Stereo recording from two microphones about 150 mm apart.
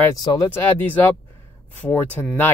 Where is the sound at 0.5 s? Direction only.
10° left (ahead or behind).